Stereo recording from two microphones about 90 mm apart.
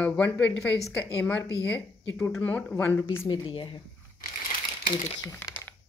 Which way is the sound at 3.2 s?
65° left (ahead or behind).